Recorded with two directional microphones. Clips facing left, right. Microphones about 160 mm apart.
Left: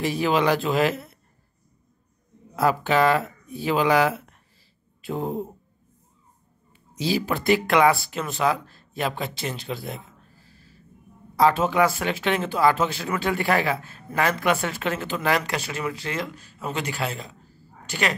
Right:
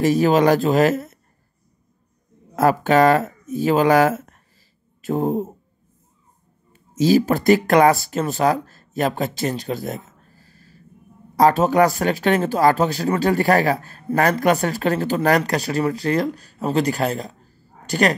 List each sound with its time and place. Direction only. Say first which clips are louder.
0.0 s speech: right 6 dB; 40° right (ahead or behind)
2.5 s speech: right 5 dB; 45° right (ahead or behind)
6.7 s speech: right 9 dB; 45° right (ahead or behind)